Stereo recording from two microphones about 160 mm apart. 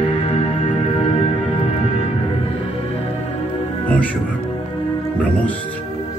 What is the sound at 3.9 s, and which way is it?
Music, 10° left (ahead or behind).